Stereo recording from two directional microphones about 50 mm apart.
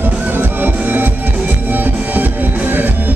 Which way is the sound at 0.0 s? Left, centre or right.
Right.